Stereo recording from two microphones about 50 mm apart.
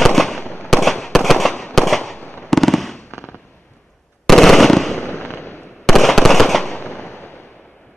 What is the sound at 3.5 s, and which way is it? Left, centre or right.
Fireworks, left.